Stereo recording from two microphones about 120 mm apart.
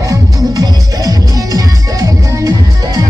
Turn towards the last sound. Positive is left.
turn(degrees=-30)  # may be behind; listen again after turning